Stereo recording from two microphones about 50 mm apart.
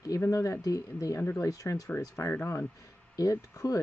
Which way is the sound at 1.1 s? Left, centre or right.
Left.